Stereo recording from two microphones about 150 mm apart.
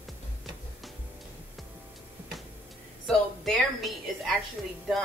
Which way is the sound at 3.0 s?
5° left (ahead or behind).